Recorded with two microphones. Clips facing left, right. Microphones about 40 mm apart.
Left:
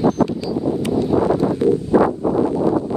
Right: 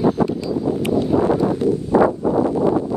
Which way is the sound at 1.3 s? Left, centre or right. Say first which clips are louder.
Left 1 dB; left.